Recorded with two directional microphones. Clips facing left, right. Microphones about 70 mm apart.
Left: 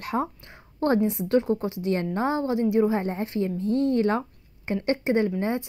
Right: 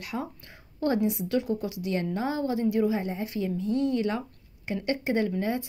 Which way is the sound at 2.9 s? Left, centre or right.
Left.